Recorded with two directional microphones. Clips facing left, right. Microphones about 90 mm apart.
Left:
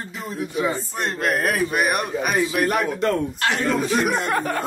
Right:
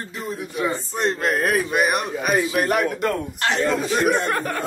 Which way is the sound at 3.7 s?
Centre (ahead or behind).